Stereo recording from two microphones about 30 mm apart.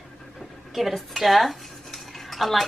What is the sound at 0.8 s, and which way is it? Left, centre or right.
Dishes, centre.